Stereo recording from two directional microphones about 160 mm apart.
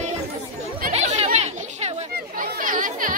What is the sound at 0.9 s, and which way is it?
Children playing, 45° right (ahead or behind).